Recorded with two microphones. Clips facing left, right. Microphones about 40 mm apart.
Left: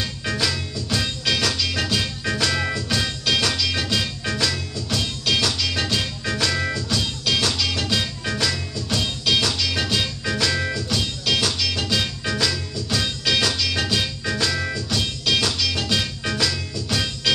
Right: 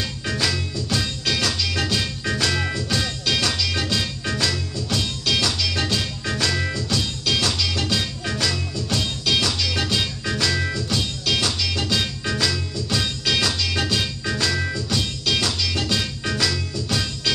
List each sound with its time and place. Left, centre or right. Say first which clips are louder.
0.0 s music: even; centre